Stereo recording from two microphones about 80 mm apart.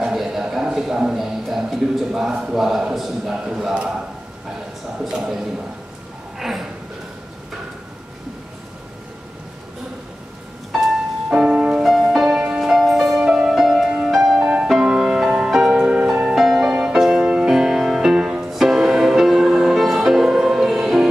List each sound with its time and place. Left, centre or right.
0.0 s a man's voice: centre
10.7 s music: centre
14.4 s music: centre
16.3 s music: centre